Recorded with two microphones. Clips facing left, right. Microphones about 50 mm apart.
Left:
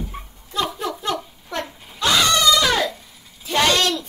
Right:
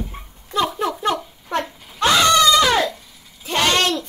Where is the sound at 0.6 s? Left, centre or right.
Right.